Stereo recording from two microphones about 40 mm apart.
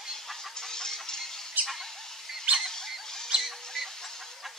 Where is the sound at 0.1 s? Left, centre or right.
Centre.